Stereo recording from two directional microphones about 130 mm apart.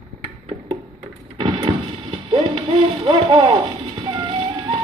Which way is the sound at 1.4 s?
40° right (ahead or behind).